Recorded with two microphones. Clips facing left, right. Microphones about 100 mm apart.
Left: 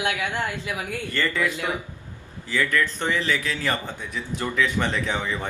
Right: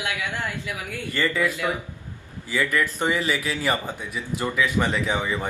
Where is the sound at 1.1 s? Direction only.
10° right (ahead or behind).